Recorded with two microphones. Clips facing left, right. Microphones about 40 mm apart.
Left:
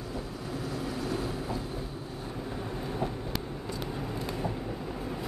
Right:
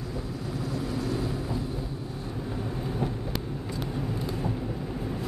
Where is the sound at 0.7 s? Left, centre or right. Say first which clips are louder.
Right 3 dB; left.